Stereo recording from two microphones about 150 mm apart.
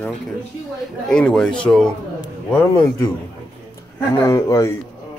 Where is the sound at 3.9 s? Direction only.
20° left (ahead or behind).